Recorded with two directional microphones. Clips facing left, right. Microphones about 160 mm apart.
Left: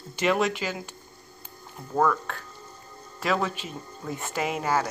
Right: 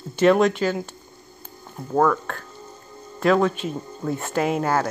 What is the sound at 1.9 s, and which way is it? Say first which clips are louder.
Speech: right 4 dB; 50° right (ahead or behind).